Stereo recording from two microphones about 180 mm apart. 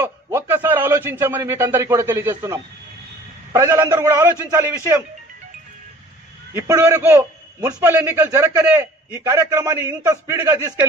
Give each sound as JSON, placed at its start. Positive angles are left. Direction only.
{"t": 0.0, "sound": "a man's voice", "side_deg": -15}
{"t": 6.5, "sound": "a man's voice", "side_deg": -15}